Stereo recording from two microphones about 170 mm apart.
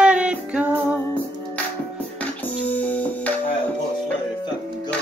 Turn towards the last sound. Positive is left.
turn(degrees=10)  # may be behind; listen again after turning